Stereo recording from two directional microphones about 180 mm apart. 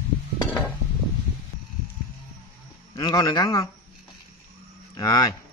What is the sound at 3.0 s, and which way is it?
Speech, 20° left (ahead or behind).